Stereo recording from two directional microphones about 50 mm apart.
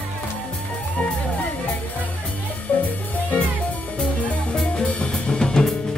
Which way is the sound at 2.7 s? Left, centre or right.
Left.